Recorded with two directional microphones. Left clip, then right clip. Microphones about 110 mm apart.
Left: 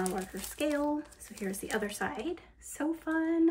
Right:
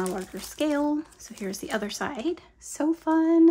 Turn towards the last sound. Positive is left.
turn(degrees=-30)  # may be behind; listen again after turning